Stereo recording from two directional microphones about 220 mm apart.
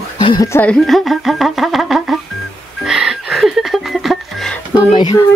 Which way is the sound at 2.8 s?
Centre (ahead or behind).